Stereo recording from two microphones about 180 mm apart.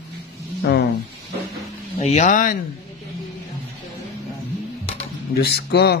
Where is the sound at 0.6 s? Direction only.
65° left (ahead or behind).